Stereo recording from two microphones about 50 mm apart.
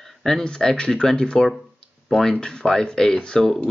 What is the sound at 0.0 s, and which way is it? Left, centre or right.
Speech, centre.